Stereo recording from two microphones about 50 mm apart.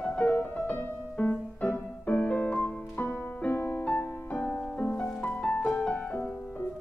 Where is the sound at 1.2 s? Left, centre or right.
Left.